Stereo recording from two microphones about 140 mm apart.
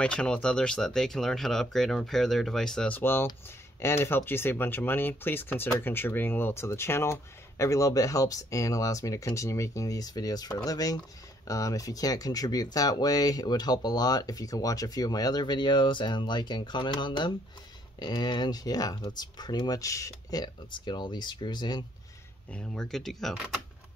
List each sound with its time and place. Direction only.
0.0 s speech: 5° left (ahead or behind)
3.0 s speech: 15° left (ahead or behind); by 21.8 s 30° left (ahead or behind)
22.5 s speech: 5° left (ahead or behind)